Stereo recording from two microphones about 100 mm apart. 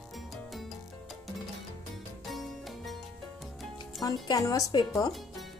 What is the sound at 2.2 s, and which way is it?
Music, centre (ahead or behind).